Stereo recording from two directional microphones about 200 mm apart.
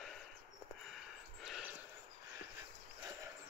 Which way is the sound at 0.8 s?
Centre (ahead or behind).